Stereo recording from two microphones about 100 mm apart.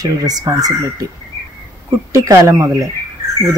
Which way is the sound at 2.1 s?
35° right (ahead or behind).